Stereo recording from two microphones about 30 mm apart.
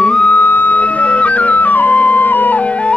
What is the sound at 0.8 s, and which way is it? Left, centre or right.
Music, left.